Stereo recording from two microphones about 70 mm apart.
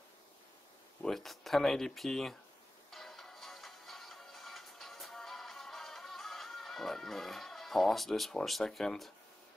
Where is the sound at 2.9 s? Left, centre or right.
Centre.